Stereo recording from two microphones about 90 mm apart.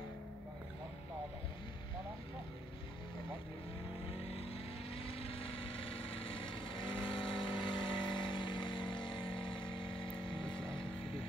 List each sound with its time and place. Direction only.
4.3 s vehicle: 90° left; by 10.9 s 75° left (ahead or behind)